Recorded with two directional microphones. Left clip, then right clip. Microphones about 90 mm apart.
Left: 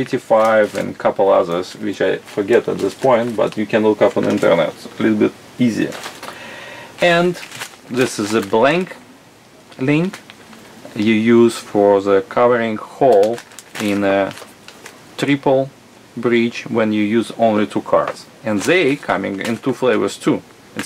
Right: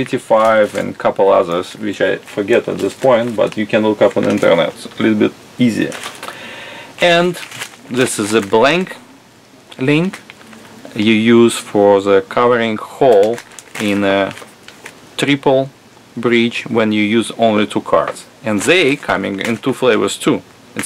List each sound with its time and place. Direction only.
0.0 s speech: 25° right (ahead or behind)
2.5 s speech: 5° right (ahead or behind)
3.5 s speech: 15° right (ahead or behind)
4.5 s speech: 35° right (ahead or behind)
7.0 s speech: 25° right (ahead or behind)
13.2 s crumpling: centre (ahead or behind)
13.8 s speech: 30° right (ahead or behind)
20.8 s a sound: 5° right (ahead or behind)